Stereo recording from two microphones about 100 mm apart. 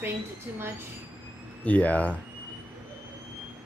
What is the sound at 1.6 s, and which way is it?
Speech, 15° left (ahead or behind).